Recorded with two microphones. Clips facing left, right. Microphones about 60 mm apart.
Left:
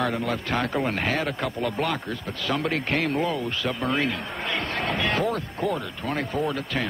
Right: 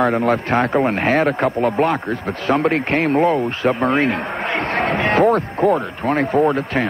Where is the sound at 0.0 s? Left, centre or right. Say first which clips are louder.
Right 10 dB; right.